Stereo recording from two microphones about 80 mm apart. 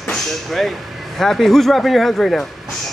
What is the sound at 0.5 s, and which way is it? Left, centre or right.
Speech, centre.